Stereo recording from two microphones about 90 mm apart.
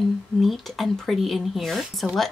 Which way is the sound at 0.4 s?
Centre (ahead or behind).